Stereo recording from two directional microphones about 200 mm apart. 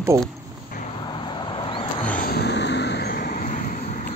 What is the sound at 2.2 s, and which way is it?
Vehicle, 50° left (ahead or behind).